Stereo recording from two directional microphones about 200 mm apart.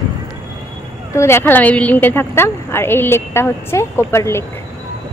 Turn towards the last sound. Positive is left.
turn(degrees=15)  # may be behind; listen again after turning